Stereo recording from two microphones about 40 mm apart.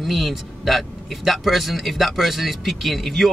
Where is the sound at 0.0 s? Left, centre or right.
Centre.